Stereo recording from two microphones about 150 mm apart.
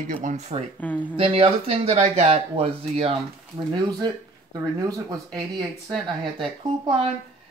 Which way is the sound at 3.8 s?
30° right (ahead or behind).